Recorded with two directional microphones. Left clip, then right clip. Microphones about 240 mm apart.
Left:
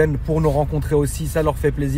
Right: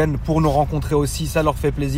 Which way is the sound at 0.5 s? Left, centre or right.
Centre.